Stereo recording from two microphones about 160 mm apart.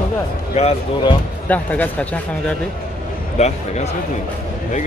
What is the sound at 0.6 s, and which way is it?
Speech, 40° left (ahead or behind).